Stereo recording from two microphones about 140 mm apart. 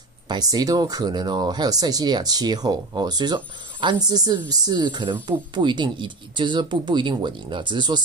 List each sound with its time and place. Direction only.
0.3 s speech: 25° right (ahead or behind)